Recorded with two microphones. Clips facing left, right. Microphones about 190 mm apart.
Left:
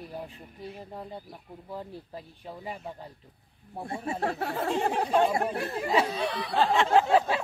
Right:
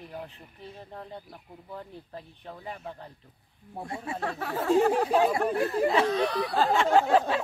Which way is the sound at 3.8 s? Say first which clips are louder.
Left 2 dB; 25° left (ahead or behind).